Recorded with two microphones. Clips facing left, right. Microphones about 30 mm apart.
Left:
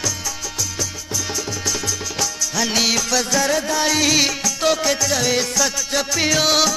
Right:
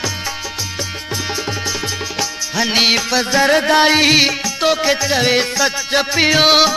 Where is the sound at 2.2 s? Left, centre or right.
Right.